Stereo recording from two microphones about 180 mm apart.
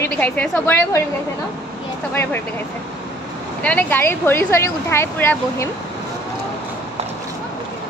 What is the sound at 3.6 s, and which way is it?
A woman's voice, 10° left (ahead or behind).